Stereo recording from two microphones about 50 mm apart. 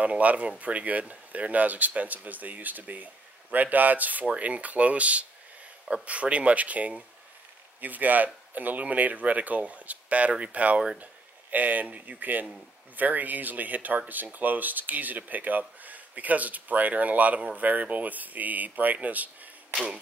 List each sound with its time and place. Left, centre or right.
0.0 s speech: right
19.7 s speech: centre